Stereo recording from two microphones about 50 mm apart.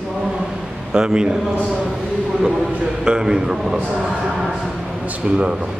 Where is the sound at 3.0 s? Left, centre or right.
Centre.